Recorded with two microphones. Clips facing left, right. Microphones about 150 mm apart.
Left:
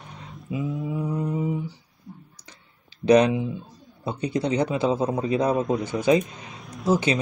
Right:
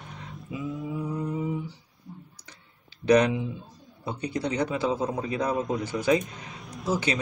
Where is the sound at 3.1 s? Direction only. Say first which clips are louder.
Left 3 dB; 20° left (ahead or behind).